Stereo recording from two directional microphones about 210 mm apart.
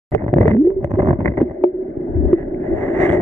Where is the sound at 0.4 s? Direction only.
35° right (ahead or behind).